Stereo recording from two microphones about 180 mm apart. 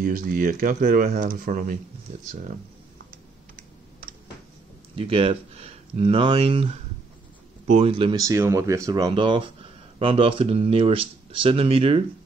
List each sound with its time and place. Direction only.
0.0 s speech: 50° right (ahead or behind)
4.9 s speech: 30° right (ahead or behind)
8.2 s speech: 15° right (ahead or behind)